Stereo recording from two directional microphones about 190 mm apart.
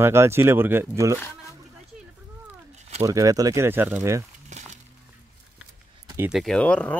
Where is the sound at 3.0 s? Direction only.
15° right (ahead or behind).